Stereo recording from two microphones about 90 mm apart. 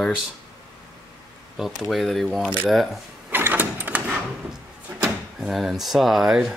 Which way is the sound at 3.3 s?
20° right (ahead or behind).